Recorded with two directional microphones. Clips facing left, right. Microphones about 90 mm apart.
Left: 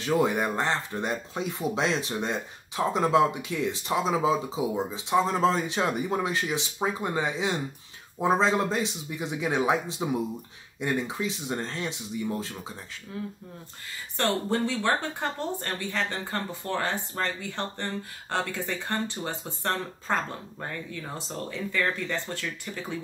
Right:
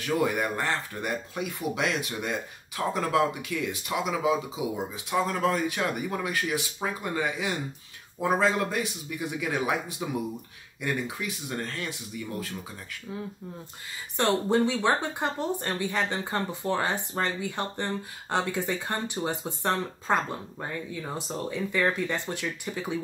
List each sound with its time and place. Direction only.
0.0 s speech: 25° left (ahead or behind)
14.1 s speech: 20° right (ahead or behind)